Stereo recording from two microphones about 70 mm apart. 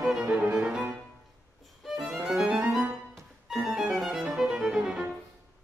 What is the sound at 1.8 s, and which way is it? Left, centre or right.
Music, centre.